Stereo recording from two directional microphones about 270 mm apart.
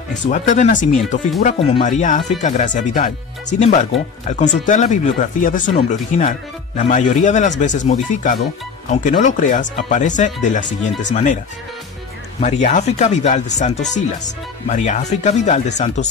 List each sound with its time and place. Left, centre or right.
0.1 s speech: left
12.4 s speech: left